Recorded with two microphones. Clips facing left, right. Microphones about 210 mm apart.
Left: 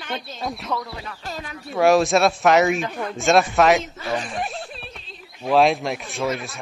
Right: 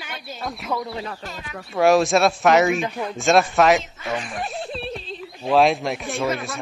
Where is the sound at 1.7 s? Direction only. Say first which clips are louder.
Even; centre (ahead or behind).